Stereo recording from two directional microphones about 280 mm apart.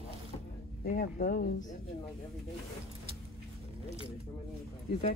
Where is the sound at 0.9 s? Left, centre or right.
Left.